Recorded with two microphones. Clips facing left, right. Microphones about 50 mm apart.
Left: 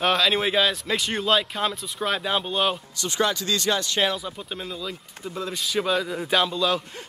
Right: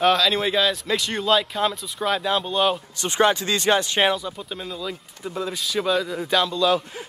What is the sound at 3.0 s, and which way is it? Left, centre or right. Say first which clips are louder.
Speech: right 5 dB; right.